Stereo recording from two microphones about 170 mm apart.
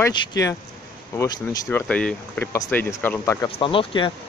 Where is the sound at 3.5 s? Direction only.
30° left (ahead or behind).